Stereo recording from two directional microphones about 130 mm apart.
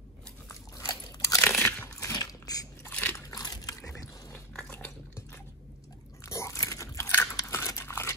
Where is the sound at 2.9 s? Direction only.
15° left (ahead or behind).